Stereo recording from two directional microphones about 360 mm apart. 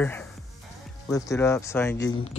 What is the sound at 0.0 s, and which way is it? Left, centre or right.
Speech, centre.